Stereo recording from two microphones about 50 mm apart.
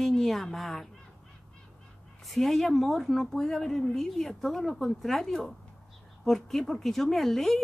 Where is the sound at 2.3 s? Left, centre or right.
Centre.